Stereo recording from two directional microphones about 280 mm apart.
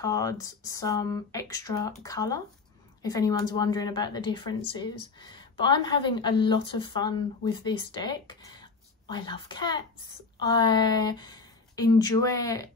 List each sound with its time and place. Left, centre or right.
0.0 s a woman's voice: centre